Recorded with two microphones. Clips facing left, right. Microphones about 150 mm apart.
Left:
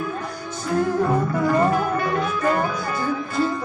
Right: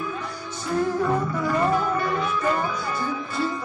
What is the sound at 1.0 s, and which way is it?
Music, 45° left (ahead or behind).